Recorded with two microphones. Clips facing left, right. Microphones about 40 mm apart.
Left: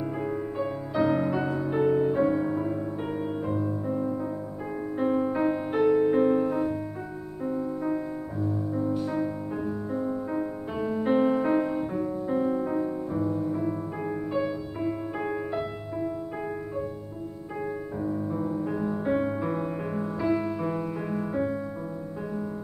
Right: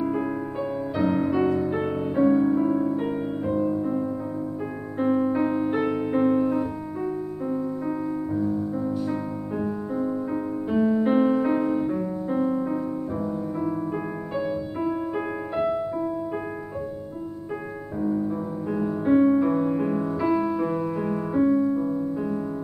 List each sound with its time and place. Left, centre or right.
0.0 s music: centre
18.0 s music: centre